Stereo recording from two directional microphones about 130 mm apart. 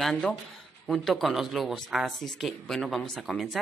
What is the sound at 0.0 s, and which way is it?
Speech, 5° left (ahead or behind).